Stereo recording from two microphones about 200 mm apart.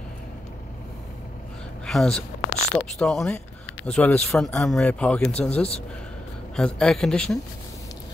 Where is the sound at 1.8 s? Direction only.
Centre (ahead or behind).